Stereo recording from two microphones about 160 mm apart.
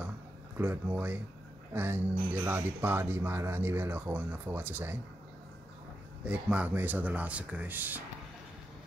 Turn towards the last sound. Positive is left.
turn(degrees=-10)  # may be behind; listen again after turning